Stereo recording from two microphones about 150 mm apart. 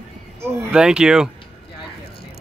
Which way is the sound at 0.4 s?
15° right (ahead or behind).